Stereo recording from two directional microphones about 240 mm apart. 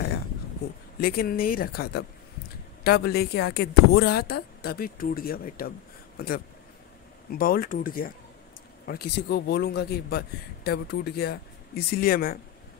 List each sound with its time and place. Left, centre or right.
1.0 s a man's voice: left